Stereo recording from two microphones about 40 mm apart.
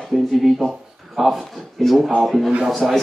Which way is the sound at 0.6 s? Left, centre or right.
Left.